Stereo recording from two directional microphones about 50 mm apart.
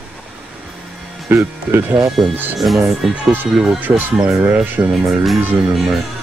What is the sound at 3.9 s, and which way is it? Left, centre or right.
Speech, right.